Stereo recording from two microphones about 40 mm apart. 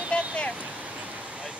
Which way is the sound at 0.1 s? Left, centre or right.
Left.